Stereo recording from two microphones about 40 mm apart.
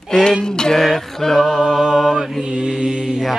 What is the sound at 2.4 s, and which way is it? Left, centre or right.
Mantra, right.